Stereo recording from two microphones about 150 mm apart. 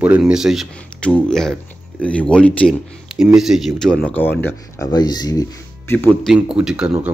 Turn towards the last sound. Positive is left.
turn(degrees=-5)  # may be behind; listen again after turning